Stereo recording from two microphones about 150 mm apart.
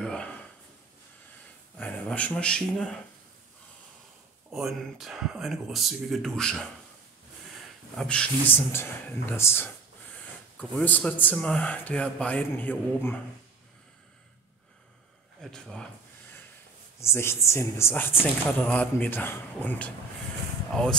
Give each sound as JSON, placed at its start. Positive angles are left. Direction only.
{"t": 0.0, "sound": "a sound", "side_deg": 5}
{"t": 1.8, "sound": "speech", "side_deg": 10}
{"t": 4.5, "sound": "speech", "side_deg": 0}
{"t": 7.9, "sound": "speech", "side_deg": 5}
{"t": 15.4, "sound": "speech", "side_deg": 5}
{"t": 17.0, "sound": "speech", "side_deg": 15}